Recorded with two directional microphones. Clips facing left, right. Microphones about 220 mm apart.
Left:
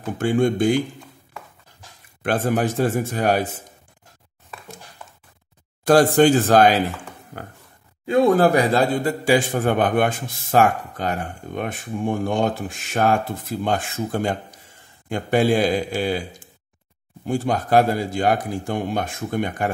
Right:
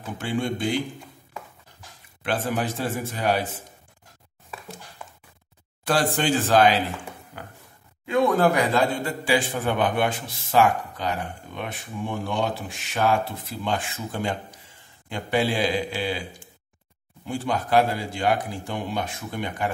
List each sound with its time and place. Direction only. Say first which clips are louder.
0.2 s a man's voice: left 8 dB; 50° left (ahead or behind)
2.2 s a man's voice: left 5 dB; 50° left (ahead or behind)
5.9 s a man's voice: left 9 dB; 45° left (ahead or behind)
8.1 s a man's voice: left 4 dB; 35° left (ahead or behind)